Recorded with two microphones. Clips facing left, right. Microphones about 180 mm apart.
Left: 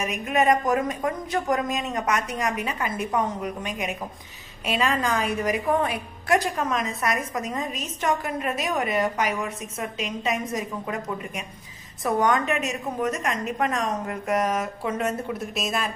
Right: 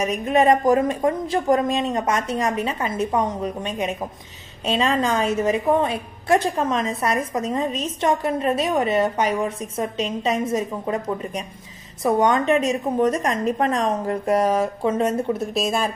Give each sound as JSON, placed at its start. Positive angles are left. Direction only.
{"t": 0.0, "sound": "a woman's voice", "side_deg": -30}